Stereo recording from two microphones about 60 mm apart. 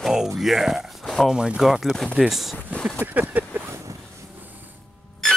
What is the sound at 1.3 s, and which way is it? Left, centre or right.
Speech, centre.